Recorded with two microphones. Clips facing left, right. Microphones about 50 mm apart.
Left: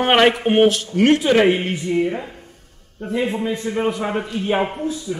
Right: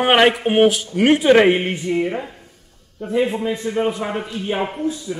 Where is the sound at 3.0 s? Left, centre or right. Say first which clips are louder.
Right 2 dB; centre.